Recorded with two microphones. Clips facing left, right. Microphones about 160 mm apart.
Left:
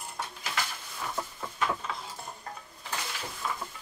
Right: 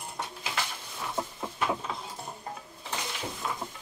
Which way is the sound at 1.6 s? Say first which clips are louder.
Right 1 dB; 10° right (ahead or behind).